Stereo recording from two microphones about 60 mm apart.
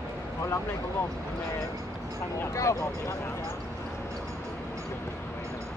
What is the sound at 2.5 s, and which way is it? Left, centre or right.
Speech, left.